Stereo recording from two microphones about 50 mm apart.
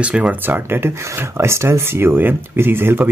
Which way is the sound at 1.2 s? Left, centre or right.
Right.